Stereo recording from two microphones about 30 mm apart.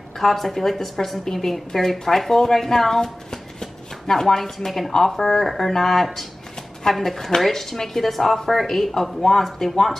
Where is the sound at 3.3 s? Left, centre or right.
Centre.